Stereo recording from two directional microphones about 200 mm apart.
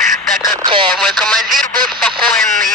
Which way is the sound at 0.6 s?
25° right (ahead or behind).